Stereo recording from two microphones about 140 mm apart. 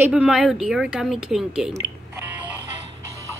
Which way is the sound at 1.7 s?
20° right (ahead or behind).